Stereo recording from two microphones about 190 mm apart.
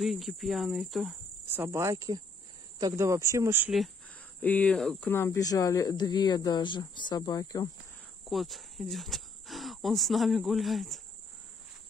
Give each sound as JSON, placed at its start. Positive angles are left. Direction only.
{"t": 0.0, "sound": "speech", "side_deg": 0}
{"t": 1.5, "sound": "speech", "side_deg": -15}
{"t": 4.4, "sound": "speech", "side_deg": 10}
{"t": 8.3, "sound": "speech", "side_deg": 0}